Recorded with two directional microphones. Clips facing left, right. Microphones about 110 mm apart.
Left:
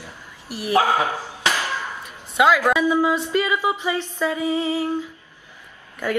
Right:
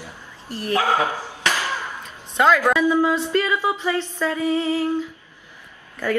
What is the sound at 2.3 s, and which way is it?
A woman's voice, 10° left (ahead or behind).